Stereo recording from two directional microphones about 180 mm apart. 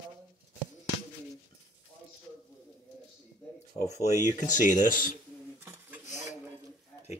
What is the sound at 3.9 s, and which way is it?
Speech, 15° right (ahead or behind).